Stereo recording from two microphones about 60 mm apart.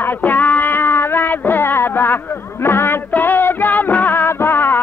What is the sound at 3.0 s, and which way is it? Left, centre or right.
Music, left.